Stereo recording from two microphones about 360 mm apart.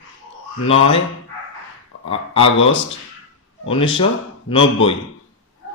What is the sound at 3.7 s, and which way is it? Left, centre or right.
Speech, centre.